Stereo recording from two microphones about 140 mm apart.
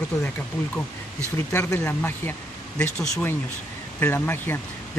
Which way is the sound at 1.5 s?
20° left (ahead or behind).